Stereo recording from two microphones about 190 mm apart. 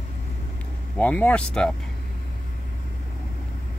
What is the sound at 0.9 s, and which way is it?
Speech, 10° left (ahead or behind).